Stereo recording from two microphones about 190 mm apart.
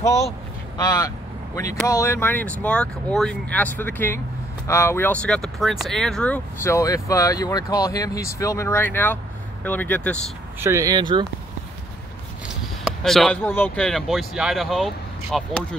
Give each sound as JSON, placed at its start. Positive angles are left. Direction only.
{"t": 0.0, "sound": "speech", "side_deg": 15}
{"t": 10.6, "sound": "speech", "side_deg": -15}
{"t": 12.4, "sound": "a sound", "side_deg": 0}
{"t": 13.4, "sound": "speech", "side_deg": 10}